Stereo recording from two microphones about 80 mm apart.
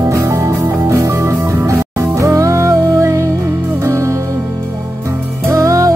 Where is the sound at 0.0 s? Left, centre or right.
Right.